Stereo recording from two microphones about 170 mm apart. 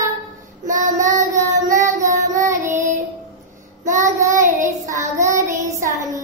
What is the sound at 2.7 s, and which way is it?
Child singing, 45° right (ahead or behind).